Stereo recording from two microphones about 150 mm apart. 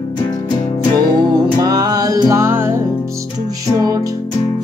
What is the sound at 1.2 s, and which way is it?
Music, 30° right (ahead or behind).